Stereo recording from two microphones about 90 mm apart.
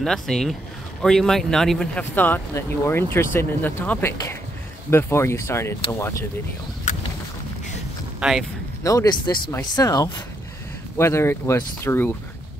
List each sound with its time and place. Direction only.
0.0 s speech: 5° left (ahead or behind)
2.0 s speech: 20° left (ahead or behind)
8.2 s speech: 5° right (ahead or behind)
8.8 s speech: 40° left (ahead or behind)
11.0 s speech: 30° left (ahead or behind)